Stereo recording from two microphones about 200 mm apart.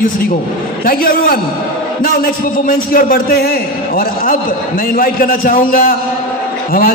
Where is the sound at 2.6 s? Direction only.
45° left (ahead or behind).